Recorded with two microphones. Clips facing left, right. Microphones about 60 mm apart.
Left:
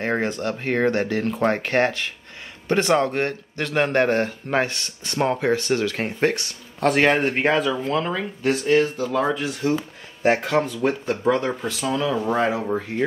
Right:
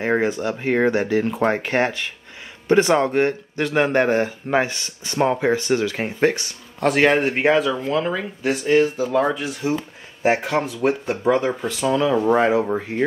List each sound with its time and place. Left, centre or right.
0.0 s speech: centre